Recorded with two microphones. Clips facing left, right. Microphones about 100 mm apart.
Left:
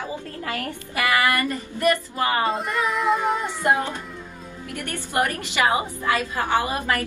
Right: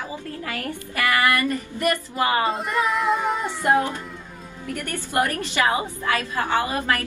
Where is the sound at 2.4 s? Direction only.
Centre (ahead or behind).